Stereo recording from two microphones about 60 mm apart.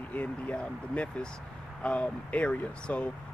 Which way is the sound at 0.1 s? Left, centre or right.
Left.